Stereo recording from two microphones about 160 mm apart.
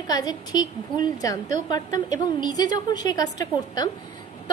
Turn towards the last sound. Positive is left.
turn(degrees=25)  # may be behind; listen again after turning